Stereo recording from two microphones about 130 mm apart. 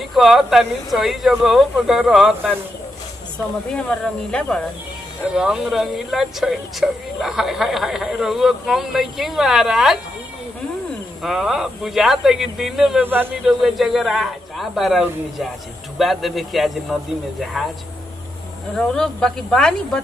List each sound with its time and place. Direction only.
0.1 s speech: centre (ahead or behind)
3.7 s speech: 5° left (ahead or behind)
5.3 s speech: 5° right (ahead or behind)
11.2 s speech: centre (ahead or behind)
13.0 s speech: 15° right (ahead or behind)
13.5 s speech: centre (ahead or behind)
18.8 s speech: 5° left (ahead or behind)